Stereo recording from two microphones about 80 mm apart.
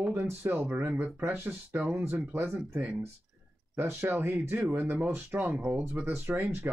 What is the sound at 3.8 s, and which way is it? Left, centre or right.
Speech, right.